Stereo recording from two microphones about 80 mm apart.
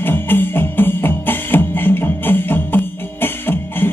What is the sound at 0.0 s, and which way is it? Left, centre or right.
Music, left.